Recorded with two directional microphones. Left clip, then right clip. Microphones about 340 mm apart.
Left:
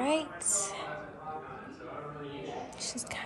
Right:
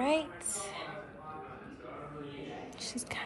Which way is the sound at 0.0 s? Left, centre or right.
Centre.